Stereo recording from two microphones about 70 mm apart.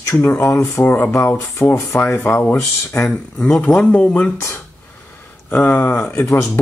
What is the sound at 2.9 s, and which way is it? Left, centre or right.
Speech, left.